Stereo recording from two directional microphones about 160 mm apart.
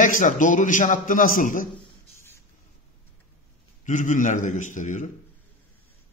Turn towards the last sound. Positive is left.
turn(degrees=50)  # may be behind; listen again after turning